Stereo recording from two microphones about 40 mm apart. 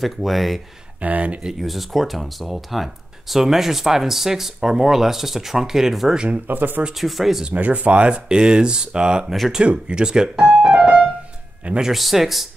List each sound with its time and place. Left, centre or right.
0.0 s speech: centre
1.0 s speech: right
1.6 s speech: centre
6.4 s speech: right
7.0 s speech: centre
7.5 s speech: right; by 10.4 s centre
10.7 s keyboard: right
11.9 s speech: centre